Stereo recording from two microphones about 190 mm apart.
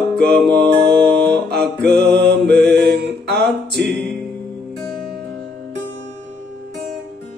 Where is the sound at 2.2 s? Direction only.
65° right (ahead or behind).